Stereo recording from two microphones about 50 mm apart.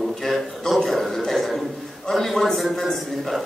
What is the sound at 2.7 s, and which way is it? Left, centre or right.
Speech, centre.